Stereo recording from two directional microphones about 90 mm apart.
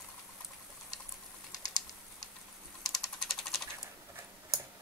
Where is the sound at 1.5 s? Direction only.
45° left (ahead or behind).